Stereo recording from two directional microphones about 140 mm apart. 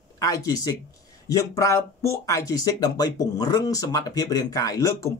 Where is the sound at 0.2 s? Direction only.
25° left (ahead or behind).